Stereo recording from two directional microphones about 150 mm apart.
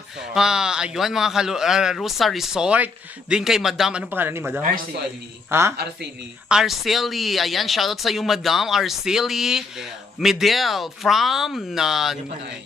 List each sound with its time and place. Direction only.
0.3 s speech: 5° right (ahead or behind)
6.5 s speech: centre (ahead or behind)